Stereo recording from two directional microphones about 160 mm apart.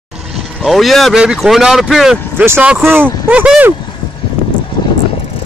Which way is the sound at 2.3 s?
15° right (ahead or behind).